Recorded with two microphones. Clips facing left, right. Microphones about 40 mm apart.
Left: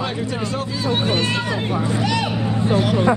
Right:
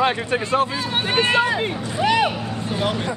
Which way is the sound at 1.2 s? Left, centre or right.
Right.